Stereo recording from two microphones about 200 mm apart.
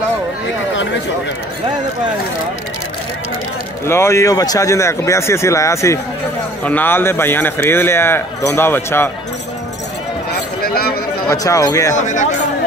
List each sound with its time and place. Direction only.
3.8 s a man's voice: 15° left (ahead or behind)
10.3 s a sound: 50° left (ahead or behind)
11.2 s a man's voice: 15° left (ahead or behind)
12.0 s speech: 40° left (ahead or behind)